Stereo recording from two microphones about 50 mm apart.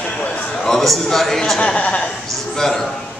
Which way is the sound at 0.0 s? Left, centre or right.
Centre.